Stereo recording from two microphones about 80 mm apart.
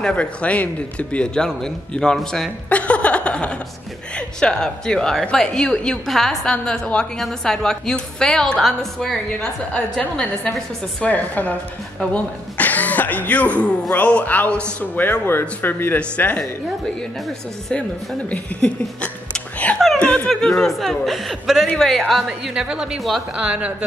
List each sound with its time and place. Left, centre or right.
0.0 s a woman's voice: centre
2.7 s chuckle: centre
4.1 s a woman's voice: centre; by 16.0 s left
16.0 s a woman's voice: centre
18.3 s speech: centre
20.0 s a sound: centre
20.2 s a woman's voice: centre
23.3 s a woman's voice: centre